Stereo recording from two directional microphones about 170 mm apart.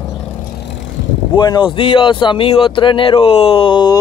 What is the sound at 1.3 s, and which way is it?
Speech, 25° left (ahead or behind).